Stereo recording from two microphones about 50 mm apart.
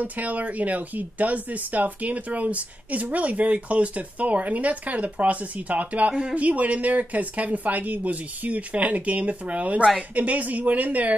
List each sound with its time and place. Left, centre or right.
0.0 s speech: right